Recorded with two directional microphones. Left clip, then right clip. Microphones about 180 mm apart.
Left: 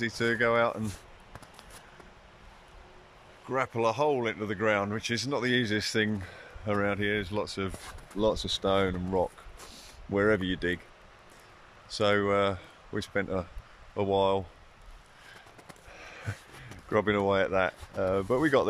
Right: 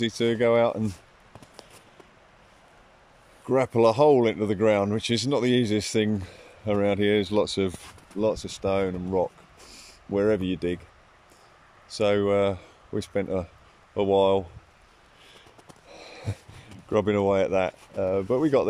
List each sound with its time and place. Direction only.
0.0 s speech: 15° right (ahead or behind)
3.4 s speech: 25° right (ahead or behind)
8.2 s speech: 10° right (ahead or behind)
11.9 s speech: 10° right (ahead or behind)
15.9 s sniff: 20° right (ahead or behind)
16.9 s speech: 10° right (ahead or behind)